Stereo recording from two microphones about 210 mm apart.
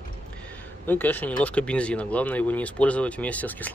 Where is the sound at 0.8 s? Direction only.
10° left (ahead or behind).